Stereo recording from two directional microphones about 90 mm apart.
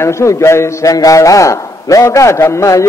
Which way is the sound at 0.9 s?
40° left (ahead or behind).